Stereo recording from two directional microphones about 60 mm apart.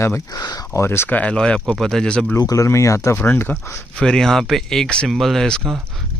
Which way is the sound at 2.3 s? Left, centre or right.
Left.